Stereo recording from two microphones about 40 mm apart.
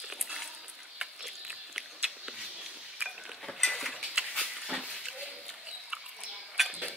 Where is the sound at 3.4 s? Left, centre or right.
Centre.